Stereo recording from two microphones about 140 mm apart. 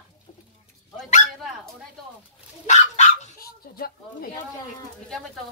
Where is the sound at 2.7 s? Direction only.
75° left (ahead or behind); by 4.3 s 90° left.